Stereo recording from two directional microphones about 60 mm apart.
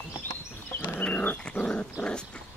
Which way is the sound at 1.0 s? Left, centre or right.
Left.